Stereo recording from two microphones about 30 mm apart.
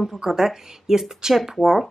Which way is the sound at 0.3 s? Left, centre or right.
Centre.